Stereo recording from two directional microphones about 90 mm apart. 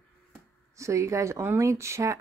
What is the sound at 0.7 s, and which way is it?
Speech, 35° right (ahead or behind).